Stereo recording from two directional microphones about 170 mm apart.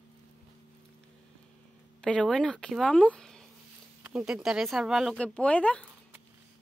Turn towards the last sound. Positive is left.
turn(degrees=5)  # may be behind; listen again after turning